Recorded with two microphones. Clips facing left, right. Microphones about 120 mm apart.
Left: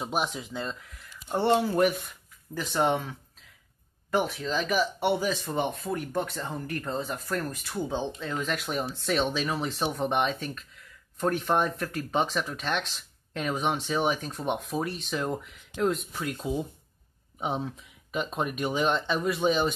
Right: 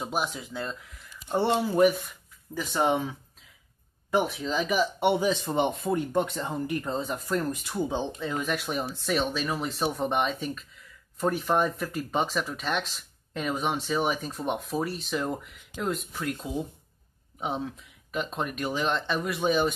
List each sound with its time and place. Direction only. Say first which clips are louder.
0.1 s speech: left 1 dB; 5° right (ahead or behind)
4.2 s speech: right 1 dB; 10° right (ahead or behind)